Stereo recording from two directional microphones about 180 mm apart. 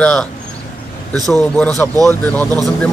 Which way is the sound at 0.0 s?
5° left (ahead or behind).